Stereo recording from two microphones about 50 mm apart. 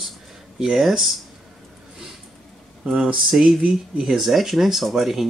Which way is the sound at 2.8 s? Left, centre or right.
Centre.